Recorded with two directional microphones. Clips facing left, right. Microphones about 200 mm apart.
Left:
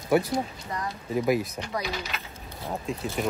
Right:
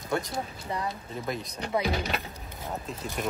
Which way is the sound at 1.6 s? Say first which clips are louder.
Right 4 dB; 35° right (ahead or behind).